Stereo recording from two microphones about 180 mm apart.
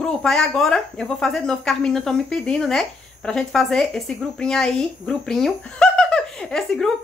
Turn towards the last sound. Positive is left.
turn(degrees=5)  # may be behind; listen again after turning